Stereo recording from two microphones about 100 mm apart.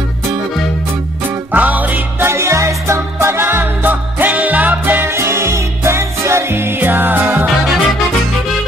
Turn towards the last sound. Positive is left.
turn(degrees=-20)  # may be behind; listen again after turning